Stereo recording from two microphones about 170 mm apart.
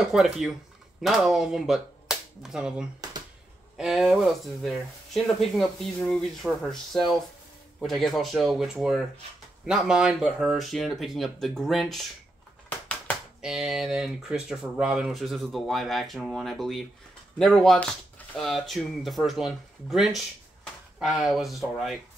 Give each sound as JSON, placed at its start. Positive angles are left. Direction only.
{"t": 0.1, "sound": "speech", "side_deg": 0}
{"t": 12.6, "sound": "typewriter", "side_deg": 10}
{"t": 13.4, "sound": "speech", "side_deg": 0}